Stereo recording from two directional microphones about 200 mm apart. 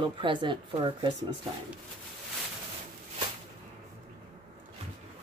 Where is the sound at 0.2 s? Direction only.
25° right (ahead or behind).